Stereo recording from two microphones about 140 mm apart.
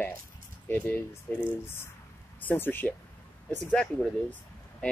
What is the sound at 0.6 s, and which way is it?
Speech, 15° left (ahead or behind).